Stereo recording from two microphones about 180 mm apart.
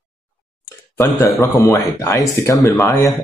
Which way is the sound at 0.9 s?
15° left (ahead or behind).